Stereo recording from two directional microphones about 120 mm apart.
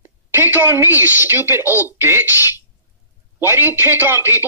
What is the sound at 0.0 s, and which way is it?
Speech, 15° right (ahead or behind).